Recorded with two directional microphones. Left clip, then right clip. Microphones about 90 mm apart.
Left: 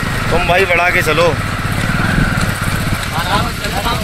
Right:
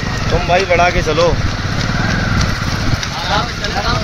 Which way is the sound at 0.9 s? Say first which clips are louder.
Left 2 dB; 20° right (ahead or behind).